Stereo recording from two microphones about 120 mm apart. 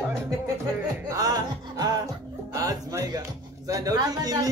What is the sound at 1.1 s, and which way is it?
Speech, 35° right (ahead or behind).